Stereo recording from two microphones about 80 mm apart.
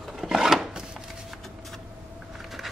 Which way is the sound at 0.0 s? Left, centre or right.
Centre.